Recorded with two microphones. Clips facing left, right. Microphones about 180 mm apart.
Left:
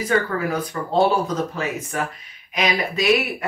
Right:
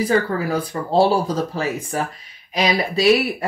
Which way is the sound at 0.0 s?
35° right (ahead or behind).